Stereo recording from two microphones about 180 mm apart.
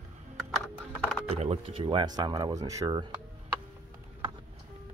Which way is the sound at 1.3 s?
35° right (ahead or behind).